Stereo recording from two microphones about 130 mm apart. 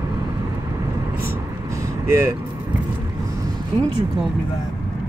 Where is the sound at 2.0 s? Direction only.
20° right (ahead or behind).